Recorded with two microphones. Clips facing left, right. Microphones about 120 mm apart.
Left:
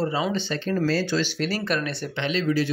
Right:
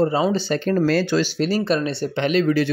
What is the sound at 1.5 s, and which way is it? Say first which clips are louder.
Speech: right 6 dB; 30° right (ahead or behind).